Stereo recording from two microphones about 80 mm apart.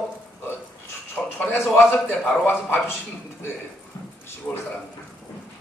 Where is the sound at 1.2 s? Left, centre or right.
Centre.